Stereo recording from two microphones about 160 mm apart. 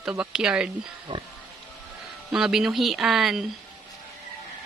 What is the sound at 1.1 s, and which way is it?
Speech, 30° right (ahead or behind).